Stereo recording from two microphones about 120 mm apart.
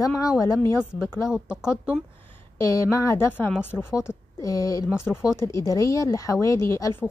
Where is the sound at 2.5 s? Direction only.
25° left (ahead or behind).